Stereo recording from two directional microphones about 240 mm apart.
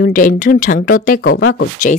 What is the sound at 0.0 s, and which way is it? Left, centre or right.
Speech, left.